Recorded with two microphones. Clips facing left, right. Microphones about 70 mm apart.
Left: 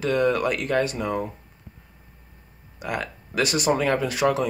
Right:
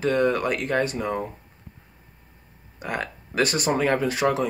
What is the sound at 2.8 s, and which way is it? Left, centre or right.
Speech, right.